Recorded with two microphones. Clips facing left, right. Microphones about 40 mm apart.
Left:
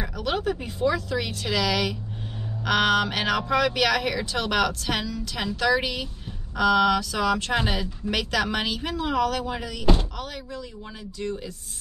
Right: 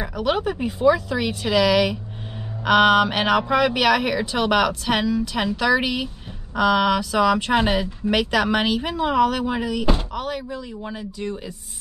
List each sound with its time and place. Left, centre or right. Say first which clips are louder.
0.0 s speech: right 4 dB; centre